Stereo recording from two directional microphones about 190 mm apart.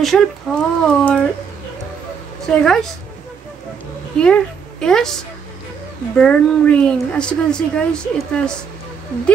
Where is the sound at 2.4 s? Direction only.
Centre (ahead or behind).